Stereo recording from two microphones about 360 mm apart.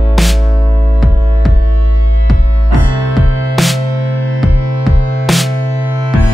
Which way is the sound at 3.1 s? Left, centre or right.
Centre.